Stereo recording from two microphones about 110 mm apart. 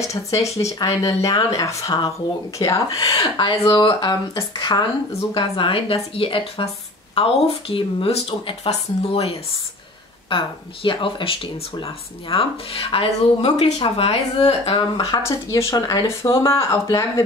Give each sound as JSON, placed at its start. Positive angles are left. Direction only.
{"t": 0.0, "sound": "speech", "side_deg": 30}
{"t": 3.1, "sound": "speech", "side_deg": 45}
{"t": 5.3, "sound": "speech", "side_deg": 55}
{"t": 10.3, "sound": "speech", "side_deg": 50}
{"t": 14.8, "sound": "speech", "side_deg": 35}